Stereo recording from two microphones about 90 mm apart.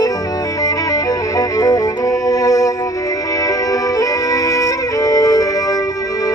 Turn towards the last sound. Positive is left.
turn(degrees=40)  # may be behind; listen again after turning